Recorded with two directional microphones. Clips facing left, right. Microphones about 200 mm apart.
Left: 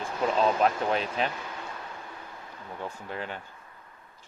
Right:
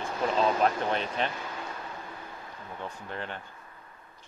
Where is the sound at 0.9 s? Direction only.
5° left (ahead or behind).